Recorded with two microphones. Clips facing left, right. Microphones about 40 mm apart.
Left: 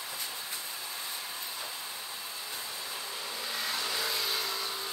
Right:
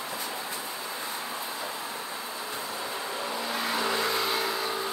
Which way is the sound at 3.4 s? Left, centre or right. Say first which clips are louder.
Right 5 dB; right.